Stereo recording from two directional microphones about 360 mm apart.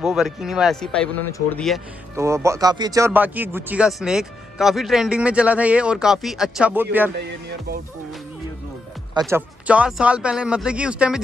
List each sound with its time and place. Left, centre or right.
0.0 s a man's voice: centre
7.2 s music: right
9.2 s a man's voice: centre